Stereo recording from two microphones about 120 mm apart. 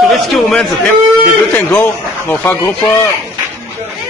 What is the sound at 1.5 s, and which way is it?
Speech, 15° left (ahead or behind).